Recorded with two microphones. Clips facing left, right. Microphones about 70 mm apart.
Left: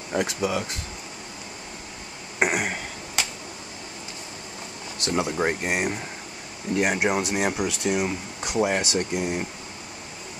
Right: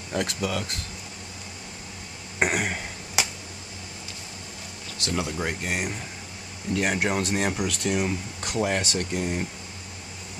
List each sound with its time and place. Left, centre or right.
0.1 s speech: centre
2.3 s throat clearing: centre
3.2 s a sound: centre
4.9 s speech: left; by 9.5 s centre